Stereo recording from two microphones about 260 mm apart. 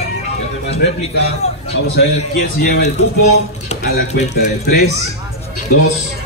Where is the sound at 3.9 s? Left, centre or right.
Left.